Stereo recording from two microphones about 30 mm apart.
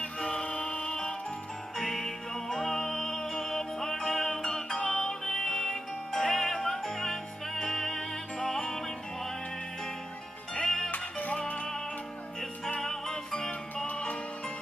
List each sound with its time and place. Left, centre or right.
0.0 s music: left
1.8 s music: centre
5.3 s music: centre
10.5 s music: centre
10.9 s music: left
12.8 s music: centre